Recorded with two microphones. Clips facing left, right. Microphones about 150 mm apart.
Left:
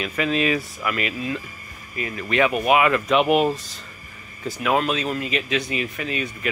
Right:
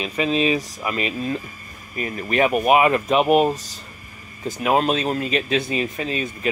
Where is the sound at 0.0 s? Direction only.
25° right (ahead or behind).